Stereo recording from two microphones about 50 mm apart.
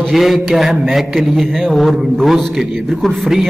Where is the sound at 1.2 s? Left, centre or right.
Centre.